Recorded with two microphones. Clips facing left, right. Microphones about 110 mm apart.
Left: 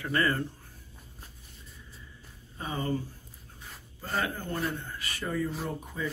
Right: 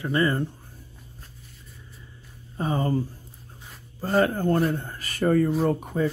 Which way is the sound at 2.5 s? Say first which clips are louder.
Right 7 dB; 35° right (ahead or behind).